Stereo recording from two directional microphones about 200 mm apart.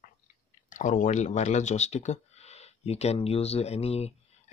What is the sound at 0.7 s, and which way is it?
Speech, 40° left (ahead or behind).